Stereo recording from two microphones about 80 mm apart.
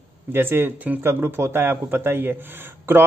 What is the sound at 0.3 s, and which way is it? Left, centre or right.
A man's voice, right.